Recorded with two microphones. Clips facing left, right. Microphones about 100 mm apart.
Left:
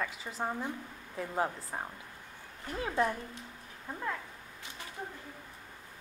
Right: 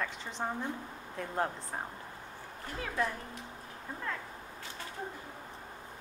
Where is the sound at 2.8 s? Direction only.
25° left (ahead or behind).